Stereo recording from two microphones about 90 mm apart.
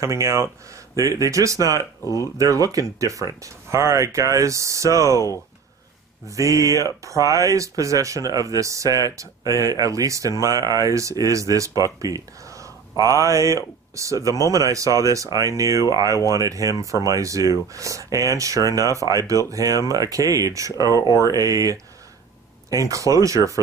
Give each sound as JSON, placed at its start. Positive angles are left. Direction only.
{"t": 0.0, "sound": "speech", "side_deg": -35}
{"t": 6.2, "sound": "speech", "side_deg": -35}
{"t": 21.0, "sound": "speech", "side_deg": 45}
{"t": 21.3, "sound": "speech", "side_deg": -40}